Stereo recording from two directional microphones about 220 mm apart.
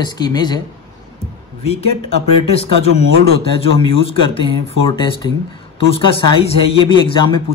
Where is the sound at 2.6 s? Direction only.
25° left (ahead or behind).